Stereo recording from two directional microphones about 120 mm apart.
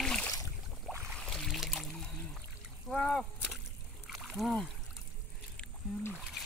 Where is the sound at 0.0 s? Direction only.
5° left (ahead or behind).